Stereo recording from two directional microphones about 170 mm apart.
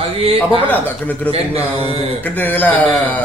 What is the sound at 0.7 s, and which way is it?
Speech, 10° left (ahead or behind).